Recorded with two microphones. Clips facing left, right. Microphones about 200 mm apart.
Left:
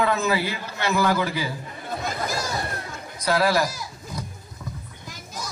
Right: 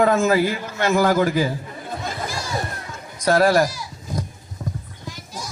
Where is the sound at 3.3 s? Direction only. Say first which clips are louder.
Right 5 dB; 45° right (ahead or behind).